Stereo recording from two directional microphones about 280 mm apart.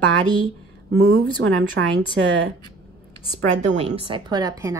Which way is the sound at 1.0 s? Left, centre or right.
Right.